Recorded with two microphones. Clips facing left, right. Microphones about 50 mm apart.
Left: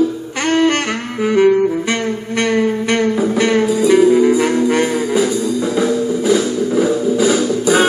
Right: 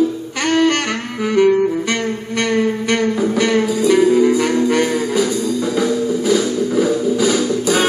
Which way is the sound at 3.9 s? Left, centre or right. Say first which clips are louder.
Left 2 dB; centre.